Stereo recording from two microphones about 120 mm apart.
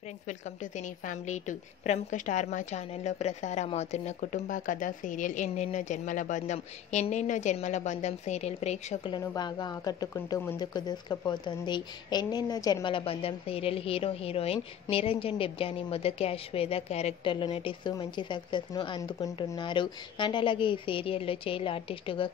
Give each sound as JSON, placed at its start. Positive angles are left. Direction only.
{"t": 0.3, "sound": "a woman's voice", "side_deg": 90}
{"t": 9.3, "sound": "a woman's voice", "side_deg": 35}
{"t": 12.8, "sound": "speech", "side_deg": 50}
{"t": 17.3, "sound": "speech", "side_deg": 45}